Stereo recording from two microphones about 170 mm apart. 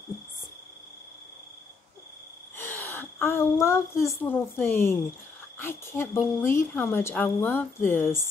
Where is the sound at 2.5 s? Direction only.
10° left (ahead or behind).